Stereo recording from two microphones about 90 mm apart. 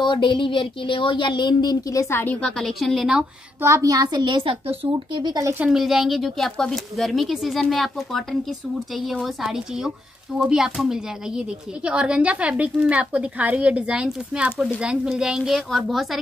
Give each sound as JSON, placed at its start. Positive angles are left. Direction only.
{"t": 0.0, "sound": "speech", "side_deg": 65}
{"t": 2.4, "sound": "speech", "side_deg": 0}
{"t": 3.6, "sound": "a woman's voice", "side_deg": -35}
{"t": 5.7, "sound": "speech", "side_deg": -5}